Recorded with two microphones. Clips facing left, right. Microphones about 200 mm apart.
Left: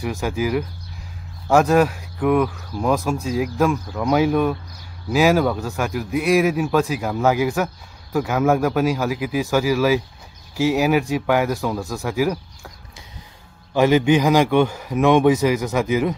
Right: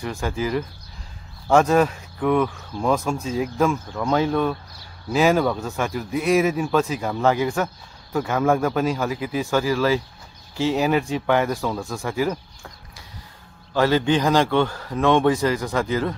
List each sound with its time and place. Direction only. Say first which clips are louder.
0.0 s a man's voice: left 3 dB; 5° left (ahead or behind)
13.7 s a man's voice: left 3 dB; 15° left (ahead or behind)